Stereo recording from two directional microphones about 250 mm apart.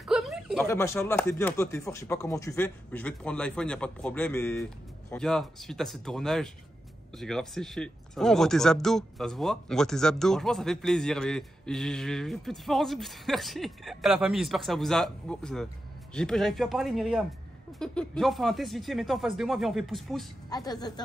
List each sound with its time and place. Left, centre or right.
0.0 s a sound: centre
0.7 s speech: centre
20.4 s a woman's voice: centre